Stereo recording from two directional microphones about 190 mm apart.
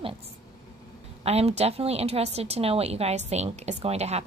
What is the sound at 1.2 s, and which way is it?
A woman's voice, 35° right (ahead or behind).